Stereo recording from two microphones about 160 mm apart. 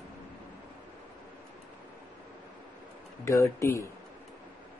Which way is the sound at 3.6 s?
20° left (ahead or behind).